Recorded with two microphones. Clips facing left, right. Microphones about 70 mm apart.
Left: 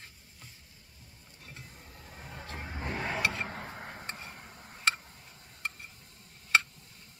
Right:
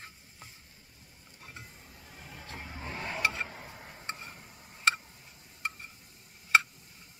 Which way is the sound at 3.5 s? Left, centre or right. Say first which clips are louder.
Left 5 dB; left.